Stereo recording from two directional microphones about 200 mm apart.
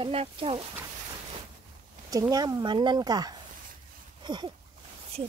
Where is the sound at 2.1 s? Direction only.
20° right (ahead or behind).